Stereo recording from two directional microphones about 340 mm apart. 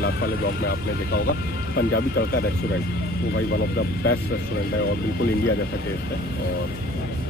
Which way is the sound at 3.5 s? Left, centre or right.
Left.